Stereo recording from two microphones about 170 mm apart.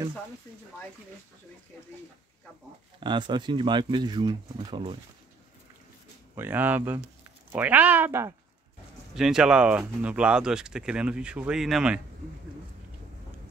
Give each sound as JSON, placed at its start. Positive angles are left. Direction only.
{"t": 3.0, "sound": "speech", "side_deg": -25}
{"t": 6.3, "sound": "speech", "side_deg": -10}
{"t": 9.1, "sound": "speech", "side_deg": -5}